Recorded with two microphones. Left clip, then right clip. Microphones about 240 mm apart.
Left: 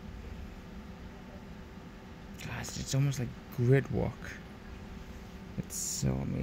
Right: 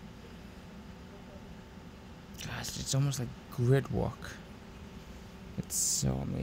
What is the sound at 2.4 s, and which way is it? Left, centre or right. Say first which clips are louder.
Speech: right 2 dB; centre.